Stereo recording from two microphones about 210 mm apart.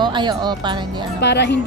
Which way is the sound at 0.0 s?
20° right (ahead or behind).